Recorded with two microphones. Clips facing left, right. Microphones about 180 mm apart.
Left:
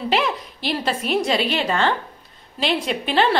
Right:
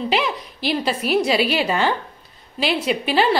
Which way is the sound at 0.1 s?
Centre (ahead or behind).